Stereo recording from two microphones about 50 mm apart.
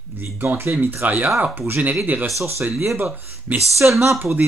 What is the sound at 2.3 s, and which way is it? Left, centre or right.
Speech, right.